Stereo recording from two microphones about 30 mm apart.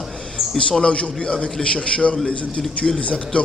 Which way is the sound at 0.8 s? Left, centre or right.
Left.